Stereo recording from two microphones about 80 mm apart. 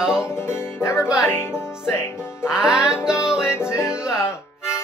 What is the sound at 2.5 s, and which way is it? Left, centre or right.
Music, centre.